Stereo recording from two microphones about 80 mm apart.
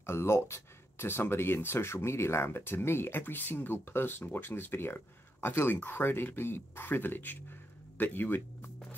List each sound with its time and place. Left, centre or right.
0.0 s speech: left